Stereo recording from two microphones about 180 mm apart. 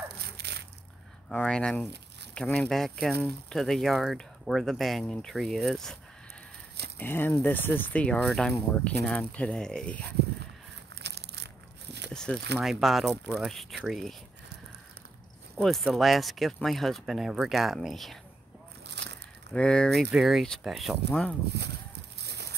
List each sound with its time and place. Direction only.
0.2 s a sound: 65° right (ahead or behind)
1.3 s speech: 5° left (ahead or behind)
7.0 s speech: 10° left (ahead or behind)
11.0 s crumpling: 70° right (ahead or behind)
12.1 s a sound: 5° left (ahead or behind)
12.5 s speech: centre (ahead or behind)
15.5 s speech: centre (ahead or behind)
18.9 s a sound: 70° right (ahead or behind)
19.5 s speech: 5° left (ahead or behind)
22.2 s horse: 70° right (ahead or behind)